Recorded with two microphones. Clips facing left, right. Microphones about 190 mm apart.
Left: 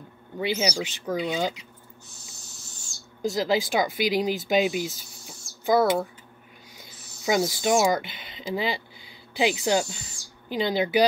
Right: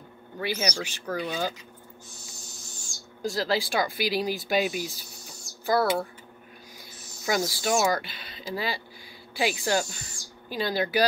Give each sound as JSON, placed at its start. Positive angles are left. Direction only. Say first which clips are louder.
{"t": 0.6, "sound": "speech", "louder": "left 3 dB", "side_deg": 10}
{"t": 3.2, "sound": "speech", "louder": "left 3 dB", "side_deg": 20}
{"t": 7.2, "sound": "speech", "louder": "left 4 dB", "side_deg": 20}